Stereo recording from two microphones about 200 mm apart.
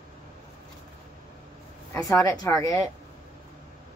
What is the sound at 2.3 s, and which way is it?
Speech, 15° left (ahead or behind).